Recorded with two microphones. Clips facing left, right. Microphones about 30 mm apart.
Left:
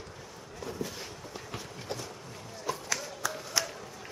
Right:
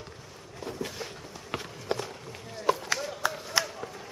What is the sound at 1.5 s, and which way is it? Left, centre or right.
Run, right.